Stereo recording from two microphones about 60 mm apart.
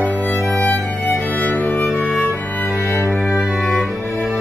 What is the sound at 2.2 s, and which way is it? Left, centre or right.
Music, left.